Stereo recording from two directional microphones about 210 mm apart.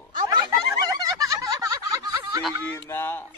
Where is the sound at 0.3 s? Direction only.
20° right (ahead or behind).